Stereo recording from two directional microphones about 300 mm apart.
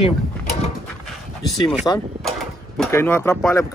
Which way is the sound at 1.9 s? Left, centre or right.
Centre.